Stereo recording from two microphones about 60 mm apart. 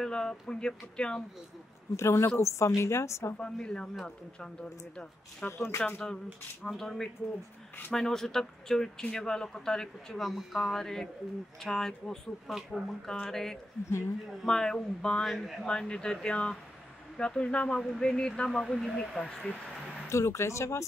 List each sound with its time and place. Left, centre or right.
0.0 s speech: centre
2.0 s speech: left
3.3 s speech: centre
5.8 s speech: left
6.7 s speech: centre
10.1 s speech: centre
13.8 s speech: left
14.4 s speech: centre
15.6 s speech: centre
20.1 s speech: left